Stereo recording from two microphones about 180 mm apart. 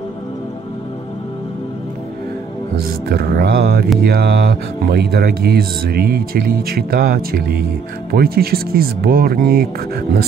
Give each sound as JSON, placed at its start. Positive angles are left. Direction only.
{"t": 3.1, "sound": "speech", "side_deg": -60}